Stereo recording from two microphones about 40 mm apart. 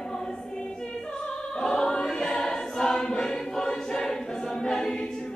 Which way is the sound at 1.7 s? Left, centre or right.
Left.